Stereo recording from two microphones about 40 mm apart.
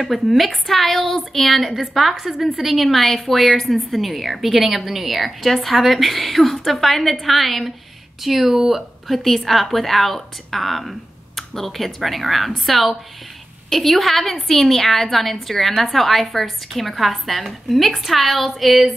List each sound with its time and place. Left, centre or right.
0.0 s a woman's voice: centre
1.7 s a woman's voice: centre